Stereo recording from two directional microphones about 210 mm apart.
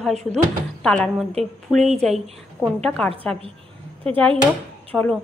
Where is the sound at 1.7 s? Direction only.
10° right (ahead or behind).